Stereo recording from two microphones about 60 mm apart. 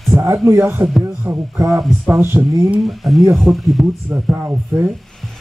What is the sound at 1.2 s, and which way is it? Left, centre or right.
Speech, right.